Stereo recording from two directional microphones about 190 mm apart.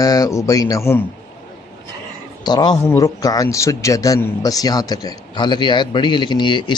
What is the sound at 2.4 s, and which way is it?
A man's voice, 20° left (ahead or behind).